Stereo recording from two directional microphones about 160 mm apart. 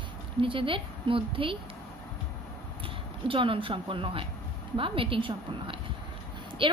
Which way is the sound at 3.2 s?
35° right (ahead or behind).